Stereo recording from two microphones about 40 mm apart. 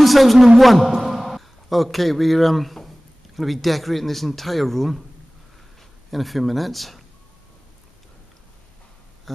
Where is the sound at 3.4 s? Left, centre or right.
Centre.